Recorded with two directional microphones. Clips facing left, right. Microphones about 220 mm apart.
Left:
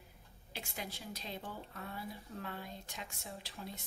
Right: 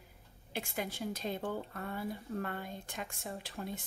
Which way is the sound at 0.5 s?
55° right (ahead or behind).